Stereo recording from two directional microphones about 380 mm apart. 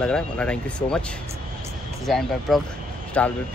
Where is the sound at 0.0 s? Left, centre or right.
Centre.